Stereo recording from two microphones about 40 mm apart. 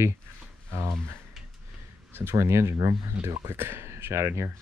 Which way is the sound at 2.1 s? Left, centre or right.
Right.